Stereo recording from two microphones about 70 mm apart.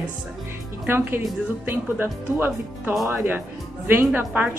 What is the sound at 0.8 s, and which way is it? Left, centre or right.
A woman's voice, right.